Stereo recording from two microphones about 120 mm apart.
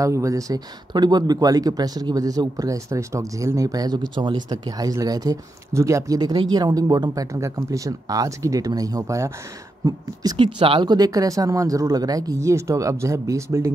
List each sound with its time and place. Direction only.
0.0 s speech: 25° right (ahead or behind)
10.3 s speech: 45° right (ahead or behind); by 13.7 s 25° right (ahead or behind)